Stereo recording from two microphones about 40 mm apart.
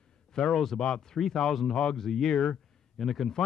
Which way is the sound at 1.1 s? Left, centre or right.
Centre.